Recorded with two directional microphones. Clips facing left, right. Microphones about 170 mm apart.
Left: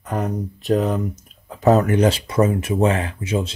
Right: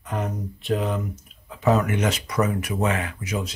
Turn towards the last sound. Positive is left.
turn(degrees=30)  # may be behind; listen again after turning